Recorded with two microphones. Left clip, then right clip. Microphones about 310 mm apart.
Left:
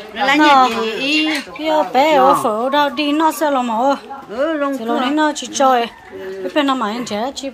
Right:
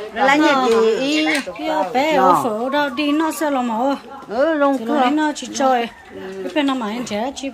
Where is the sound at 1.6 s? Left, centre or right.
Centre.